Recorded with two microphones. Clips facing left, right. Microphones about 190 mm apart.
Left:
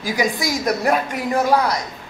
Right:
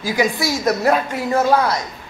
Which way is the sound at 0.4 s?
15° left (ahead or behind).